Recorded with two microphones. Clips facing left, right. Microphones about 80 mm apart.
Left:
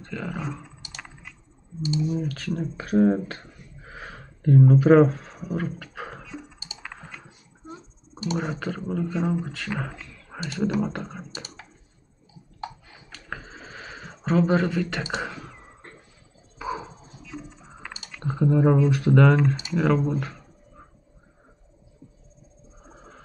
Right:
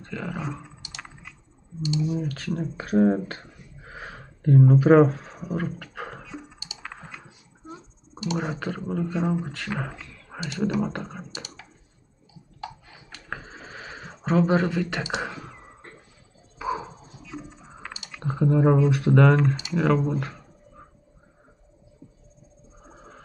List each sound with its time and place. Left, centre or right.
0.0 s speech: centre
2.0 s speech: centre
6.8 s typing: centre
7.6 s a sound: centre
8.4 s speech: centre
11.3 s typing: left
13.1 s a sound: centre
18.1 s speech: centre